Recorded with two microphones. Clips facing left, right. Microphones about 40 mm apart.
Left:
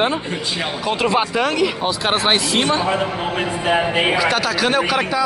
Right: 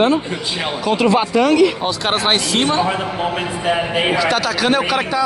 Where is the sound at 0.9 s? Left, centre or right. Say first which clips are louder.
Right 3 dB; centre.